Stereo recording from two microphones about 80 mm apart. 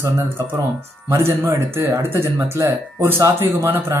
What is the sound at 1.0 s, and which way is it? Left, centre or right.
Speech, right.